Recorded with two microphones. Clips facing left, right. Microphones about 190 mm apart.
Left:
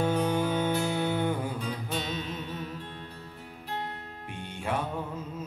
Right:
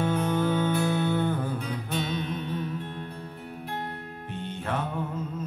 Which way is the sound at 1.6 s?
55° right (ahead or behind).